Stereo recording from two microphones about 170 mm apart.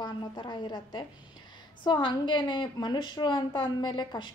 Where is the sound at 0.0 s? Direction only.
25° left (ahead or behind).